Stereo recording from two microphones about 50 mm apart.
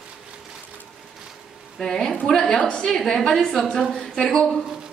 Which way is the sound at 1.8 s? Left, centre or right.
Centre.